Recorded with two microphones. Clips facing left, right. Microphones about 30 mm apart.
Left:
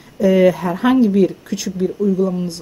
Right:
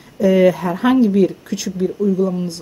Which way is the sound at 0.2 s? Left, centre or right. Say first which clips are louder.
Even; left.